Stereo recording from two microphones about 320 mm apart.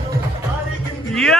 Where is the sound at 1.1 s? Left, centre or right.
Centre.